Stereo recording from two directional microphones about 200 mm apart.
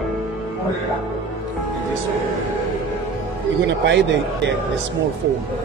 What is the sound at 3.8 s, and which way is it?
Speech, 60° right (ahead or behind).